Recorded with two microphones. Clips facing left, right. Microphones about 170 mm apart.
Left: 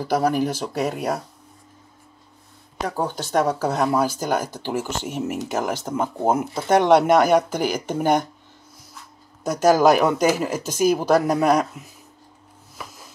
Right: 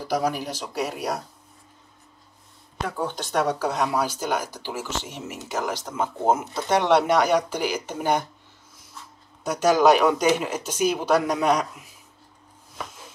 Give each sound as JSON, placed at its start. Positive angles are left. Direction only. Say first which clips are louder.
{"t": 0.0, "sound": "speech", "louder": "left 5 dB", "side_deg": 50}
{"t": 2.9, "sound": "speech", "louder": "left 4 dB", "side_deg": 40}
{"t": 9.4, "sound": "speech", "louder": "left 3 dB", "side_deg": 45}